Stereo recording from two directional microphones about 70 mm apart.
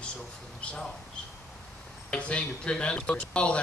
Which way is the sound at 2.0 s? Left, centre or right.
Centre.